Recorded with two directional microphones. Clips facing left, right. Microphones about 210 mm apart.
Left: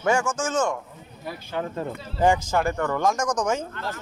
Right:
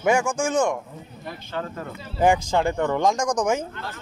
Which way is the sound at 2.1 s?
10° right (ahead or behind).